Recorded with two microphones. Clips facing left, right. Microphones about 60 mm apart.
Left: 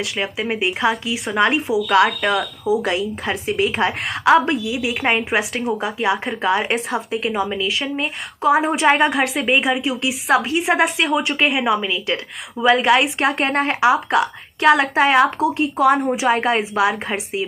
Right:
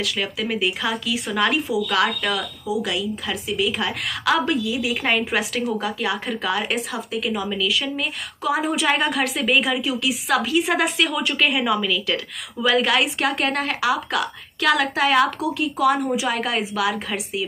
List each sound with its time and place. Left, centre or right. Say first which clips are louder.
0.0 s speech: left 2 dB; left
4.2 s speech: left 6 dB; left